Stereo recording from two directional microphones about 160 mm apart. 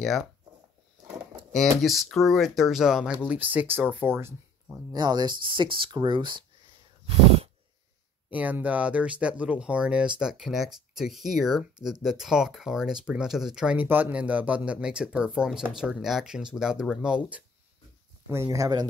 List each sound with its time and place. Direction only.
0.0 s speech: centre (ahead or behind)
1.5 s speech: centre (ahead or behind)
4.9 s speech: 25° right (ahead or behind)
7.1 s a sound: 40° right (ahead or behind)
8.3 s speech: 10° right (ahead or behind)
18.3 s speech: 15° right (ahead or behind)